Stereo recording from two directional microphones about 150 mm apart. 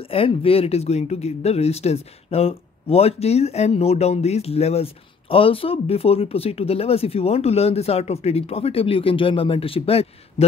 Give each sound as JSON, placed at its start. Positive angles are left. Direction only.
{"t": 0.1, "sound": "speech", "side_deg": 40}